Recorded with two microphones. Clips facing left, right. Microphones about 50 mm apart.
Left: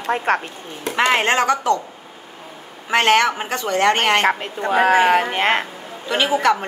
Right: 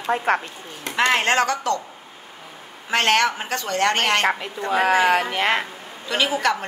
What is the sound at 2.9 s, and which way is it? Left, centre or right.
A woman's voice, centre.